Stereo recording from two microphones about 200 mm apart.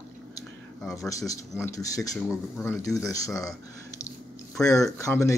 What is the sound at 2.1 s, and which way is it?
Speech, centre (ahead or behind).